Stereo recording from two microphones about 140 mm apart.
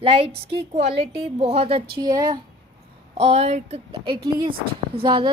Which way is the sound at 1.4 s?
45° right (ahead or behind).